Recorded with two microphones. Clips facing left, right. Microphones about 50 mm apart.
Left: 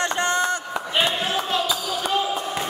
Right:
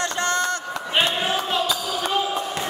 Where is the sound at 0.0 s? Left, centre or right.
Centre.